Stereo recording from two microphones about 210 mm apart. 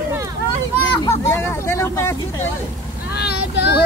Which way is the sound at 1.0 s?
10° left (ahead or behind).